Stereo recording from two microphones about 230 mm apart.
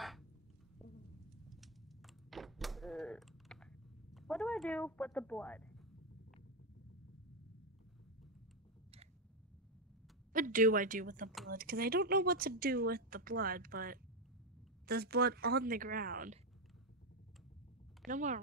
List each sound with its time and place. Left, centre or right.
1.5 s thunk: centre
4.1 s speech: centre
10.3 s speech: right
18.0 s speech: right